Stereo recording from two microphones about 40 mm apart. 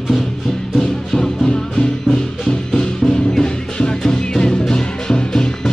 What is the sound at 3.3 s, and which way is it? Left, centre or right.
Music, left.